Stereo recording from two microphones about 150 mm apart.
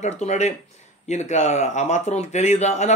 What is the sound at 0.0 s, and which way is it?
A man's voice, 50° left (ahead or behind).